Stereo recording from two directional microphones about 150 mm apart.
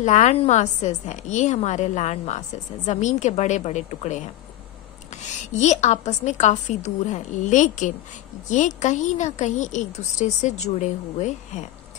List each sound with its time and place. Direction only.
0.0 s a woman's voice: 55° left (ahead or behind)